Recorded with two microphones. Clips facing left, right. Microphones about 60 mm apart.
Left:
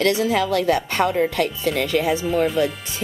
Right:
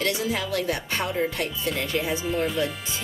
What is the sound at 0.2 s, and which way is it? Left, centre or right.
Speech, left.